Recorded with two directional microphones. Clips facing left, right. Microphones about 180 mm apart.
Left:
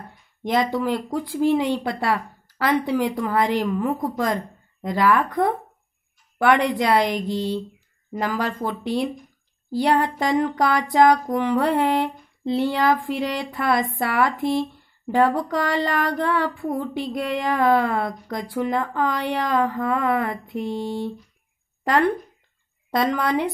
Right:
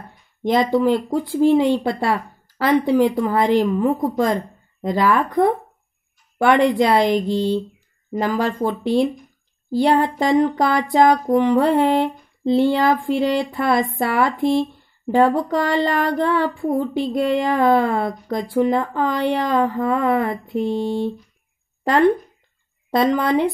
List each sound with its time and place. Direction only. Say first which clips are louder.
0.5 s speech: right 5 dB; 25° right (ahead or behind)